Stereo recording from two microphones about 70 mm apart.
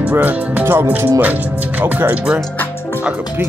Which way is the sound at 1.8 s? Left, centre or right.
Right.